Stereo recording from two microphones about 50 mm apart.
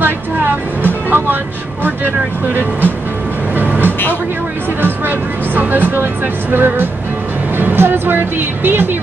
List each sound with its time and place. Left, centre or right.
0.0 s speech: right
3.5 s music: right
4.8 s speech: right